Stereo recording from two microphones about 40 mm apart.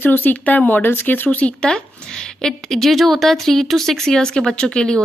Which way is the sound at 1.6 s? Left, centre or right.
Centre.